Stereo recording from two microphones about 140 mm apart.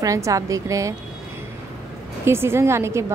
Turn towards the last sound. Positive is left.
turn(degrees=-20)  # may be behind; listen again after turning